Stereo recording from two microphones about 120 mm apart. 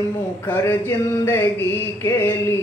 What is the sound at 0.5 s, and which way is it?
Mantra, 20° left (ahead or behind).